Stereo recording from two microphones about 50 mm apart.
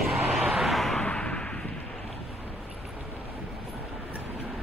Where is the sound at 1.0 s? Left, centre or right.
Left.